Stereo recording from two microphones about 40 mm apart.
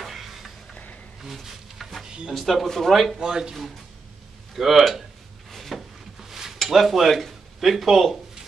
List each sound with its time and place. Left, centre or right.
0.0 s music: centre
1.2 s insect: centre
2.0 s drawer open or close: right
2.3 s speech: centre
3.3 s speech: centre
4.6 s speech: centre
5.5 s a sound: centre
6.2 s a sound: centre
6.7 s speech: centre